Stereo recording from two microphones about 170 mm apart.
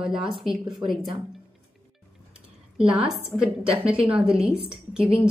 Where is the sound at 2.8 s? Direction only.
30° right (ahead or behind).